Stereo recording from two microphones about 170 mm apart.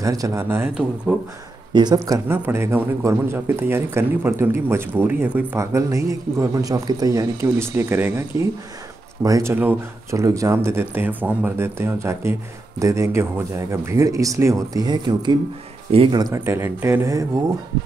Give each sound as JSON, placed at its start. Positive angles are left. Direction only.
{"t": 0.0, "sound": "speech", "side_deg": -20}
{"t": 1.7, "sound": "speech", "side_deg": -25}
{"t": 2.0, "sound": "speech", "side_deg": -15}